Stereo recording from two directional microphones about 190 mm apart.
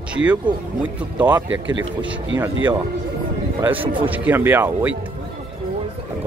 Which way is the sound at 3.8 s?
25° right (ahead or behind).